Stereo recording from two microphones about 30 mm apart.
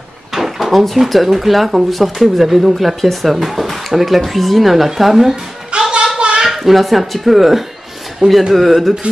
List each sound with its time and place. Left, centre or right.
0.3 s drawer open or close: centre
1.0 s speech: centre
5.3 s a sound: right
6.4 s speech: centre
8.2 s a man's voice: right
8.5 s speech: centre